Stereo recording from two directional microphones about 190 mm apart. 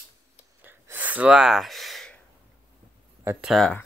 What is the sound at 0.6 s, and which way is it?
Gasp, 10° right (ahead or behind).